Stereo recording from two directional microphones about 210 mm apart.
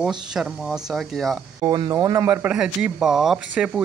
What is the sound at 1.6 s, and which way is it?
Speech, 20° right (ahead or behind).